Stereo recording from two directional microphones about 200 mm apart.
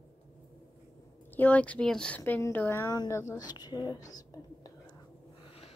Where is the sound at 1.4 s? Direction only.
5° left (ahead or behind).